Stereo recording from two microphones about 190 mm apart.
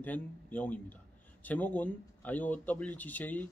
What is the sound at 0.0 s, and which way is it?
Speech, 10° left (ahead or behind).